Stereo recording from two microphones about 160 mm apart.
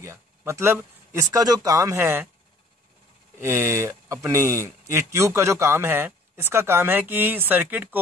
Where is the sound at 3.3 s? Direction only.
15° right (ahead or behind).